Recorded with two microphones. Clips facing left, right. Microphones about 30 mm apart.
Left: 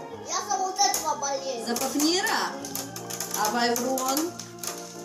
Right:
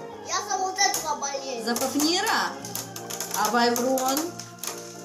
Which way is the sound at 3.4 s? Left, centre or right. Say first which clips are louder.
Right 1 dB; right.